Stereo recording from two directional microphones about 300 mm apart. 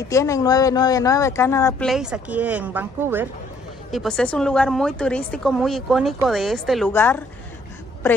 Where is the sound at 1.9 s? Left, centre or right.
Centre.